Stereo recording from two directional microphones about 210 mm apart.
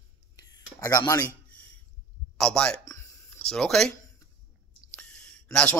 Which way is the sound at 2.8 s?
15° left (ahead or behind).